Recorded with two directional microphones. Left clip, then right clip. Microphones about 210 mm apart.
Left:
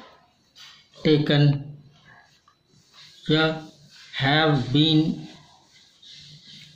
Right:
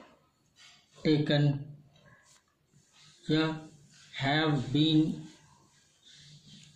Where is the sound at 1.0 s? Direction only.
25° left (ahead or behind).